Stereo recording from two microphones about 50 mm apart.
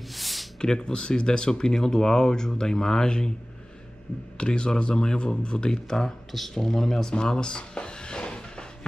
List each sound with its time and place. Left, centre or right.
0.1 s a sound: centre
0.6 s speech: centre
4.4 s speech: centre